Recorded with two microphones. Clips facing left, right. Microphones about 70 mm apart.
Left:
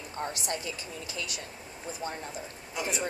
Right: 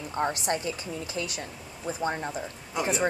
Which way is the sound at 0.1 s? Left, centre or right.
Right.